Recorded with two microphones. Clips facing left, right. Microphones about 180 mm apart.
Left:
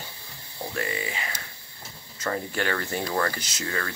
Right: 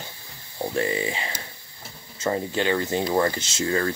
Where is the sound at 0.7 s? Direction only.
25° right (ahead or behind).